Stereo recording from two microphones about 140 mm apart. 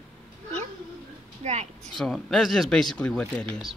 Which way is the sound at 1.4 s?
55° right (ahead or behind).